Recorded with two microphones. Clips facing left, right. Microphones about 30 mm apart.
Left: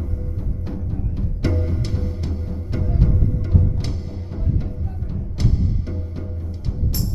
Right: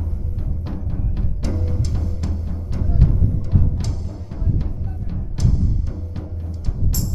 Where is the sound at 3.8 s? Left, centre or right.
Left.